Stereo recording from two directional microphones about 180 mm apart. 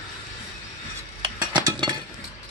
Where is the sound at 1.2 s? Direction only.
25° right (ahead or behind).